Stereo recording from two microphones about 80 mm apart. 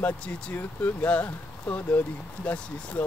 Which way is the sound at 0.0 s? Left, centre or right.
Centre.